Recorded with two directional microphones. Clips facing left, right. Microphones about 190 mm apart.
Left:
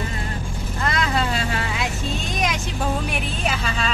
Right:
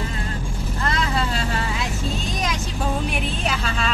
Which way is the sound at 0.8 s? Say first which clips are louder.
Left 1 dB; 15° left (ahead or behind).